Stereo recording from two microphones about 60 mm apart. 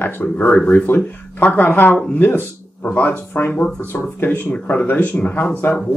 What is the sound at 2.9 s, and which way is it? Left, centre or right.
Speech, left.